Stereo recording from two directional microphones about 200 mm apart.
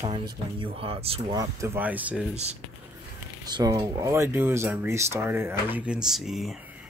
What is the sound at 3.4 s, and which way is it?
Speech, 20° right (ahead or behind).